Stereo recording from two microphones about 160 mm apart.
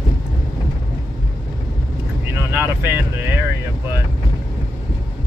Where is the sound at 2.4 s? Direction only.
15° right (ahead or behind).